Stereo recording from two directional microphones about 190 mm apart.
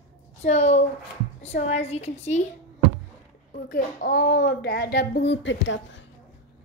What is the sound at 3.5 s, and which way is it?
A woman's voice, 50° left (ahead or behind).